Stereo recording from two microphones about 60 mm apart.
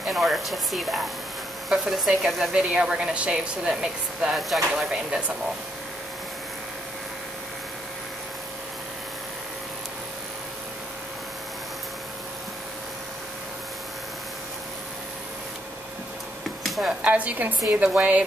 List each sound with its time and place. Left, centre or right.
0.0 s speech: centre
2.5 s a woman's voice: centre
4.8 s a woman's voice: centre
16.6 s a sound: centre
17.0 s a woman's voice: right